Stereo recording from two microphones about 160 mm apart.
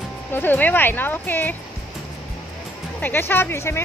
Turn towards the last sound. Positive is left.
turn(degrees=15)  # may be behind; listen again after turning